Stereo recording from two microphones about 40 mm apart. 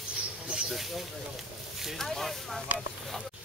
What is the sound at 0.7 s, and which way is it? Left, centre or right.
Speech, centre.